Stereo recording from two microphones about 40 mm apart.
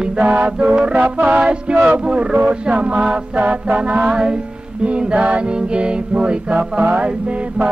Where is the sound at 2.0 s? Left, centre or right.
Right.